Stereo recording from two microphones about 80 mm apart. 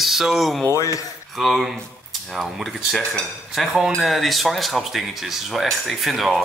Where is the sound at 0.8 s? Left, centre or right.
Left.